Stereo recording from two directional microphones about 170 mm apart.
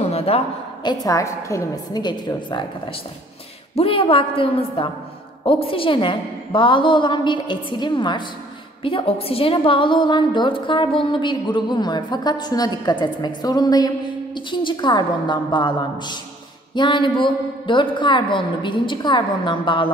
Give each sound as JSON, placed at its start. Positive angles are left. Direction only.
{"t": 0.0, "sound": "a sound", "side_deg": 35}
{"t": 0.8, "sound": "a woman's voice", "side_deg": 20}
{"t": 3.7, "sound": "a woman's voice", "side_deg": 35}